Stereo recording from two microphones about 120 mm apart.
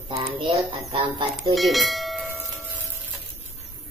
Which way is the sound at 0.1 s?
40° right (ahead or behind).